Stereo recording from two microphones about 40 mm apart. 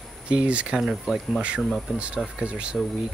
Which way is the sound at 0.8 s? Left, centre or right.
Centre.